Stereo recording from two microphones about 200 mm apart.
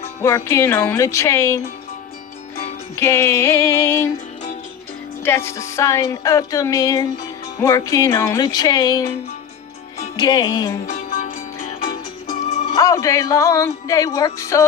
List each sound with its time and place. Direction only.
0.2 s music: 15° left (ahead or behind)
3.0 s music: 15° left (ahead or behind)
5.2 s music: 10° left (ahead or behind)
10.1 s music: 20° left (ahead or behind)
10.9 s music: 45° left (ahead or behind)
12.7 s music: 15° left (ahead or behind)